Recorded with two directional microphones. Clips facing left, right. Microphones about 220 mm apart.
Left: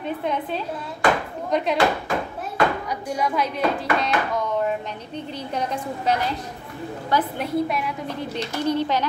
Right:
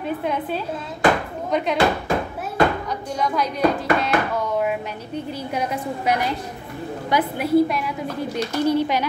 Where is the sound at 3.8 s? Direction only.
5° right (ahead or behind).